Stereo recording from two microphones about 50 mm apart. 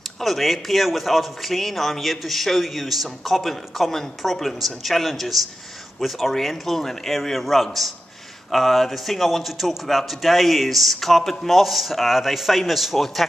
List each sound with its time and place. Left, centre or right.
0.2 s a man's voice: centre